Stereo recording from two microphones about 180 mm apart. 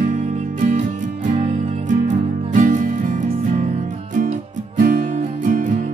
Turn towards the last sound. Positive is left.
turn(degrees=-45)  # may be behind; listen again after turning